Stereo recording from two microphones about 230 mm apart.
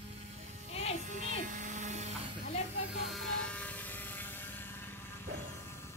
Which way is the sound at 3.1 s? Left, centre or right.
Centre.